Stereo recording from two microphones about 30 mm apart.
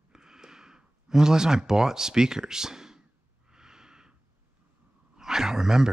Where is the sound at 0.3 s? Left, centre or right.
Centre.